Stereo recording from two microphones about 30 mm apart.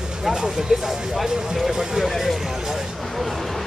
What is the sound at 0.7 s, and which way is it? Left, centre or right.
Speech, right.